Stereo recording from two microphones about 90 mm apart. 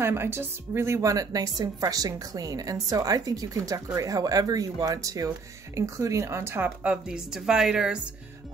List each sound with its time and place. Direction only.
0.0 s a woman's voice: 25° right (ahead or behind); by 8.0 s 10° right (ahead or behind)